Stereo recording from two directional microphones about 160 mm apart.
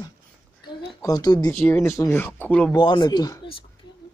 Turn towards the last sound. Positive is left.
turn(degrees=25)  # may be behind; listen again after turning